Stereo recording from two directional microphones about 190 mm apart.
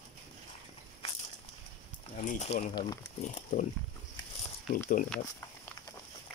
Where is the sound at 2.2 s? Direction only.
35° left (ahead or behind).